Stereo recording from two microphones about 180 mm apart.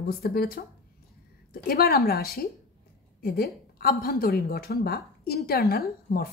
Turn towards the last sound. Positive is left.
turn(degrees=60)  # may be behind; listen again after turning